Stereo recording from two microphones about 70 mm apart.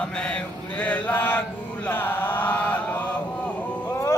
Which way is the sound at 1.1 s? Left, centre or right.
Left.